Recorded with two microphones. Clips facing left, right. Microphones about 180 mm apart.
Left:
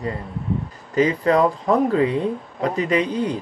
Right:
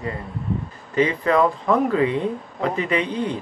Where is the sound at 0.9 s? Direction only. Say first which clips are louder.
Left 1 dB; 35° left (ahead or behind).